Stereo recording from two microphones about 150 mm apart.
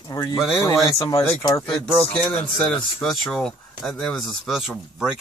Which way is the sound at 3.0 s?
5° left (ahead or behind).